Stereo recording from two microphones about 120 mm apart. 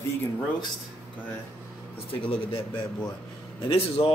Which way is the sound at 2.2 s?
50° left (ahead or behind).